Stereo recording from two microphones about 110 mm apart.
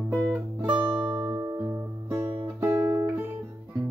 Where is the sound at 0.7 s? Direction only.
10° right (ahead or behind).